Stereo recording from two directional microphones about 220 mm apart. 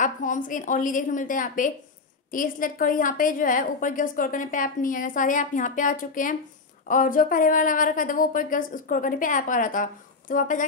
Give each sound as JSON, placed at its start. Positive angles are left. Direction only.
{"t": 0.0, "sound": "a woman's voice", "side_deg": 35}